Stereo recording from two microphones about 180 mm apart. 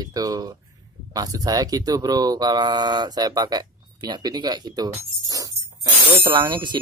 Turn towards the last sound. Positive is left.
turn(degrees=-25)  # may be behind; listen again after turning